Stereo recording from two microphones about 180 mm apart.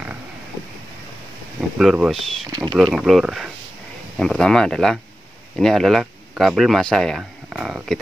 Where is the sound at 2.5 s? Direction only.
25° right (ahead or behind).